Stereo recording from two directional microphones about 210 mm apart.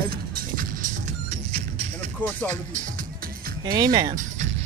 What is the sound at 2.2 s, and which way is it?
Speech, 10° left (ahead or behind).